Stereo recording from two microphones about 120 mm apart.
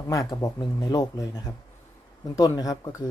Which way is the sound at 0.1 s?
30° left (ahead or behind).